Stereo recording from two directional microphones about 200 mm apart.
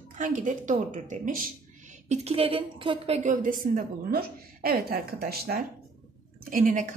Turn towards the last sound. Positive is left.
turn(degrees=-40)  # may be behind; listen again after turning